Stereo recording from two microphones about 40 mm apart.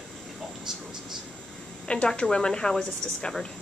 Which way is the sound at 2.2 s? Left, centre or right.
Centre.